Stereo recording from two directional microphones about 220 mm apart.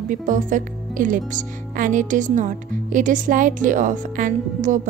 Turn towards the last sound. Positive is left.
turn(degrees=-35)  # may be behind; listen again after turning